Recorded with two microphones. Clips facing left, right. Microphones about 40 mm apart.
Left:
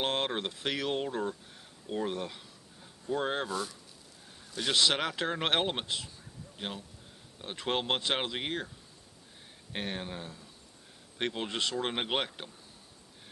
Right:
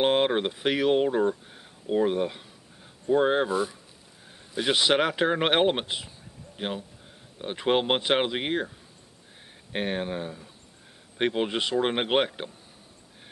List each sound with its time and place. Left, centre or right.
0.0 s speech: right